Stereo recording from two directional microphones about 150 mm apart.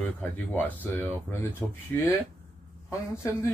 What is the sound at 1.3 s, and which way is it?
Speech, 15° left (ahead or behind).